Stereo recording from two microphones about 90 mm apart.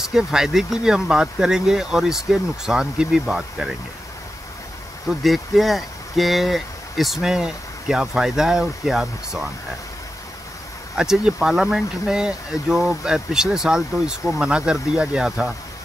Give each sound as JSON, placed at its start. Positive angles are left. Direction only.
{"t": 0.1, "sound": "speech", "side_deg": -5}
{"t": 5.2, "sound": "speech", "side_deg": 0}
{"t": 11.0, "sound": "speech", "side_deg": -10}